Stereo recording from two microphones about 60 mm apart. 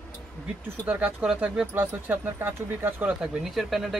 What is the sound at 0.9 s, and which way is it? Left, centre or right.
Speech, right.